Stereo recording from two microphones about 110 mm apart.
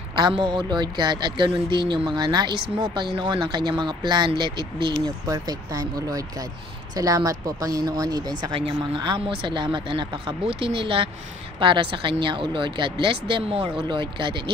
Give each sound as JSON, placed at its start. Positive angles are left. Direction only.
{"t": 0.1, "sound": "speech", "side_deg": -40}
{"t": 5.0, "sound": "speech", "side_deg": -35}
{"t": 8.5, "sound": "speech", "side_deg": -50}